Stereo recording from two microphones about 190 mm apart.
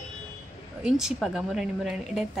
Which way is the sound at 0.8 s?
Centre (ahead or behind).